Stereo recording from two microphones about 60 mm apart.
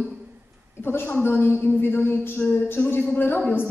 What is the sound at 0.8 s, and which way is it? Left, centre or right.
A woman's voice, left.